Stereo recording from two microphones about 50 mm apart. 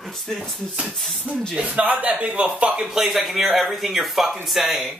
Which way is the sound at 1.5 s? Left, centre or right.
Right.